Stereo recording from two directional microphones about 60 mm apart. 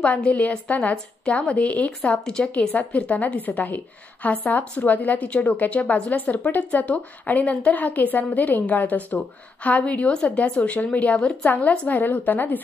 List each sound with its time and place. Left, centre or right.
0.0 s a woman's voice: left
1.9 s a woman's voice: centre; by 12.5 s left